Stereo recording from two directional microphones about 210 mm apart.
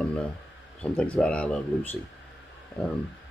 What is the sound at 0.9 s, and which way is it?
Speech, 5° left (ahead or behind).